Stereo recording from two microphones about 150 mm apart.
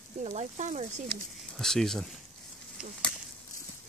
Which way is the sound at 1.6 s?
5° left (ahead or behind).